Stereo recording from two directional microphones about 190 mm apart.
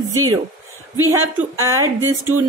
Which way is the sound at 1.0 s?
15° right (ahead or behind).